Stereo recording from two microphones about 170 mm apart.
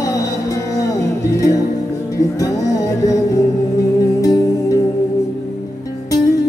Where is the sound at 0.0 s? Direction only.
20° left (ahead or behind).